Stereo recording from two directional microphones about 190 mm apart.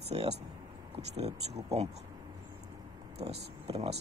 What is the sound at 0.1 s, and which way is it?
Speech, 30° right (ahead or behind).